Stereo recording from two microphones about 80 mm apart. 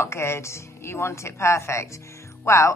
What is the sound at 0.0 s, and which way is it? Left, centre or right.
A woman's voice, left.